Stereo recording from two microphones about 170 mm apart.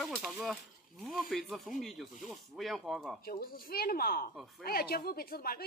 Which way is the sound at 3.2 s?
60° left (ahead or behind).